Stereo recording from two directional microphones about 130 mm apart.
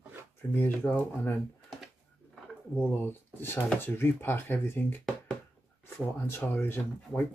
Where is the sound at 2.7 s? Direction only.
15° left (ahead or behind).